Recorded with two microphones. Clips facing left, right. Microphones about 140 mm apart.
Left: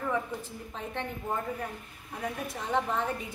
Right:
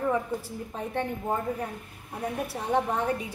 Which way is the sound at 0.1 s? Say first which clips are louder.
Right 4 dB; 10° right (ahead or behind).